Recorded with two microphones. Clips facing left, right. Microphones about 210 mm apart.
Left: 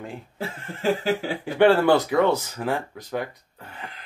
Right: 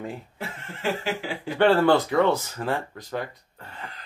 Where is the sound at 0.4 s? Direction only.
45° left (ahead or behind).